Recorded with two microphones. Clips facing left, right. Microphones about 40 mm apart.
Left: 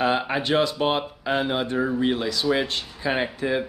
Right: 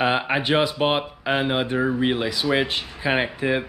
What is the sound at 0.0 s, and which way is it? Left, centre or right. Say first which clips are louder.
Speech: right 1 dB; right.